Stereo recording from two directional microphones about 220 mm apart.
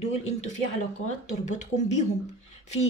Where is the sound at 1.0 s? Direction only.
30° left (ahead or behind).